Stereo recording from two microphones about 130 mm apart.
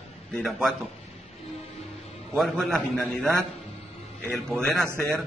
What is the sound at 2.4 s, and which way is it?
A man's voice, 5° left (ahead or behind).